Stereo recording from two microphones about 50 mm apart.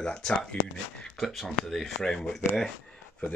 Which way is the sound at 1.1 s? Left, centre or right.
Centre.